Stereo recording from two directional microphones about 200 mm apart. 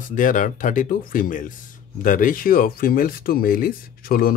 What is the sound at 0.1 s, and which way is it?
Speech, 40° left (ahead or behind).